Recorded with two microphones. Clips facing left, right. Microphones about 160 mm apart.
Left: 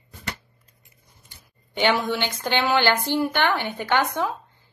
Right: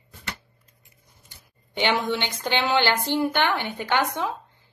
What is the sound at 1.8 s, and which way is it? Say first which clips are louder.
Speech: left 2 dB; 20° right (ahead or behind).